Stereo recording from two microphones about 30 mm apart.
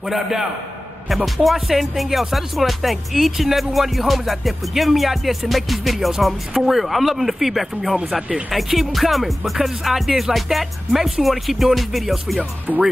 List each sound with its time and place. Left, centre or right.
0.1 s a man's voice: centre
1.0 s speech: centre
12.7 s speech: right